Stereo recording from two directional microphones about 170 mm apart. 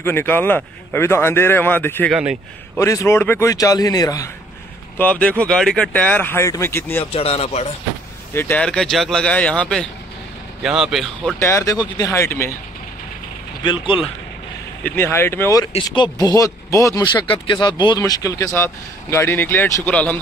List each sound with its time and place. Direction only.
0.0 s speech: 15° left (ahead or behind)
2.0 s speech: centre (ahead or behind)
2.8 s speech: 20° left (ahead or behind)
4.9 s speech: 10° left (ahead or behind)
7.2 s speech: 35° left (ahead or behind)
8.3 s speech: 10° left (ahead or behind)
11.3 s speech: 15° left (ahead or behind)
14.8 s speech: 10° left (ahead or behind)
15.7 s speech: 30° left (ahead or behind); by 20.2 s 10° left (ahead or behind)